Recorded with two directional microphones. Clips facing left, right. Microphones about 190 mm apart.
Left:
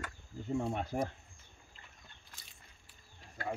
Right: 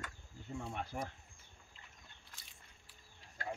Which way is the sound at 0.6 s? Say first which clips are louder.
Left 7 dB; 45° left (ahead or behind).